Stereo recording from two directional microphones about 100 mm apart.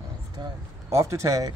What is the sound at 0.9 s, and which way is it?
Speech, 30° right (ahead or behind).